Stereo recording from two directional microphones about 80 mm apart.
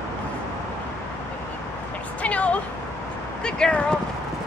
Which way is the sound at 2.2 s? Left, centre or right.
Centre.